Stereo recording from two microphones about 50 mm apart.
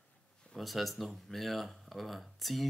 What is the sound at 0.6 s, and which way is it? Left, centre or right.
Speech, centre.